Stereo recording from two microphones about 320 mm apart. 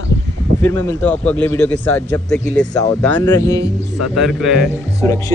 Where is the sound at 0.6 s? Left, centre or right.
Centre.